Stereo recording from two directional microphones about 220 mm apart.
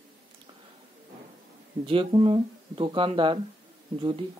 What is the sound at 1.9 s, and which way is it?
Speech, 25° right (ahead or behind).